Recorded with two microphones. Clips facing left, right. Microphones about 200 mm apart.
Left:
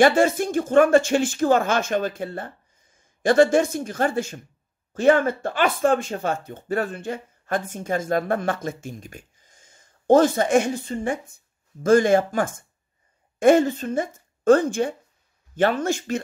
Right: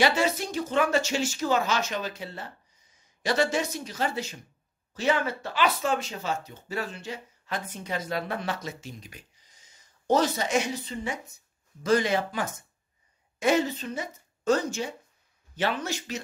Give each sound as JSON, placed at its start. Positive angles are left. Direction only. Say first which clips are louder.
{"t": 0.0, "sound": "speech", "louder": "left 7 dB", "side_deg": 50}